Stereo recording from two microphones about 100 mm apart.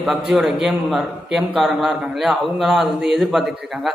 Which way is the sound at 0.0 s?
5° right (ahead or behind).